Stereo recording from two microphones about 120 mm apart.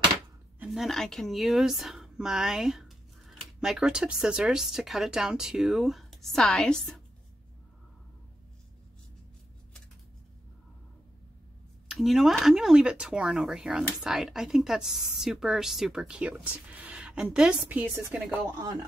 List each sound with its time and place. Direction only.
0.7 s speech: centre (ahead or behind)
11.9 s a woman's voice: centre (ahead or behind)